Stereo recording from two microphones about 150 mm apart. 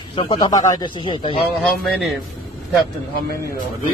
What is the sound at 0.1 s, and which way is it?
Speech, 40° left (ahead or behind).